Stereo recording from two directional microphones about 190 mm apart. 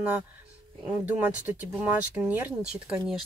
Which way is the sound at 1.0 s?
10° right (ahead or behind).